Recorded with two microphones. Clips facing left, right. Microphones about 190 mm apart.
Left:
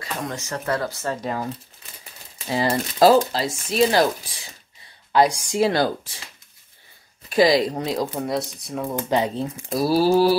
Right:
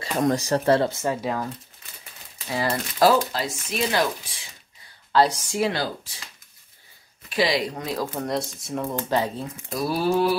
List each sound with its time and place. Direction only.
0.0 s speech: 35° right (ahead or behind)
1.1 s speech: 5° right (ahead or behind)
2.4 s speech: 25° left (ahead or behind)
5.1 s speech: 15° left (ahead or behind)
7.2 s speech: 40° left (ahead or behind)
7.8 s speech: 20° left (ahead or behind)
8.1 s speech: 5° left (ahead or behind)
8.9 s speech: 20° left (ahead or behind)
9.7 s speech: 35° left (ahead or behind)